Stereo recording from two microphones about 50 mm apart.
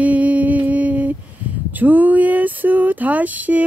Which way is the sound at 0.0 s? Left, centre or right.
Right.